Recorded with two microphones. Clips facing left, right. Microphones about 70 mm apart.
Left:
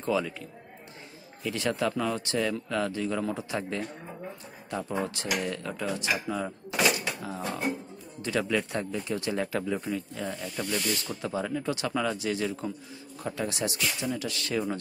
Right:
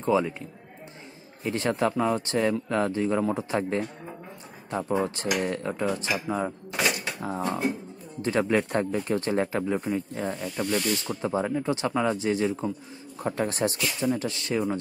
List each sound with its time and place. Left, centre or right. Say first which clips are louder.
0.0 s speech: right 4 dB; right
1.4 s a man's voice: right 3 dB; right
13.2 s a man's voice: right 5 dB; right
14.0 s speech: right 5 dB; right